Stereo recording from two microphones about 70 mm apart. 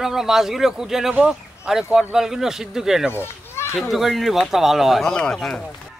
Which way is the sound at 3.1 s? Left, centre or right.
Left.